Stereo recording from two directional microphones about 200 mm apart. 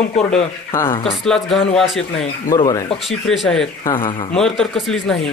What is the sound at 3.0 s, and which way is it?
Speech, centre (ahead or behind).